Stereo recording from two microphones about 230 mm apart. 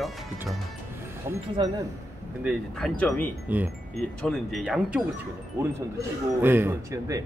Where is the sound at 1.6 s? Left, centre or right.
Right.